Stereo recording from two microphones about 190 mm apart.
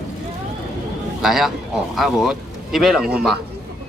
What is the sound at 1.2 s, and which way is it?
Speech, centre (ahead or behind).